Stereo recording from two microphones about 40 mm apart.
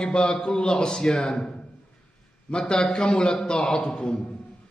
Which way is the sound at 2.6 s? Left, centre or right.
Centre.